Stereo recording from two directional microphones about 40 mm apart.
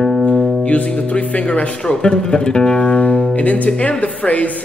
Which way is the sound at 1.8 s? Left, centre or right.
Centre.